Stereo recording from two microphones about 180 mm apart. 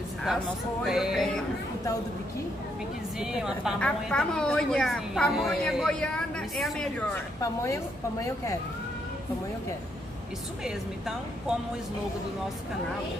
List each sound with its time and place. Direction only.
0.8 s a woman's voice: centre (ahead or behind)
3.2 s a woman's voice: 5° right (ahead or behind)
7.6 s speech: 15° left (ahead or behind)
10.6 s a woman's voice: 5° right (ahead or behind)